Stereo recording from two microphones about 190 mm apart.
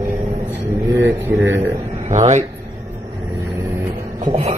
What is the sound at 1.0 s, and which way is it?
Speech, 70° right (ahead or behind).